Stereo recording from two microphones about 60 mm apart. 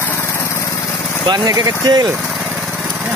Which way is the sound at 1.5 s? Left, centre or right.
Right.